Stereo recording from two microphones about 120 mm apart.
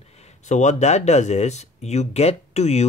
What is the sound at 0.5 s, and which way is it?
Speech, 80° left.